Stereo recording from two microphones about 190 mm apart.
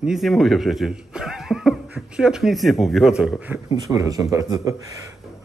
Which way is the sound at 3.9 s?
20° right (ahead or behind).